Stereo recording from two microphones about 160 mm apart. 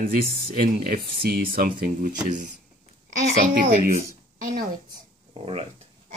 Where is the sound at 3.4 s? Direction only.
60° right (ahead or behind).